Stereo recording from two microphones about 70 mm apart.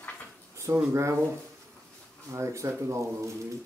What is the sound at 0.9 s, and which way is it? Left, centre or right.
Speech, right.